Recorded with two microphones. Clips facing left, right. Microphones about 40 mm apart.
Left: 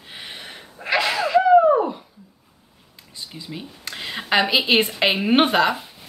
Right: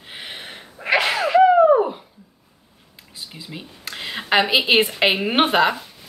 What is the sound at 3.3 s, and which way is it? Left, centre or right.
A woman's voice, centre.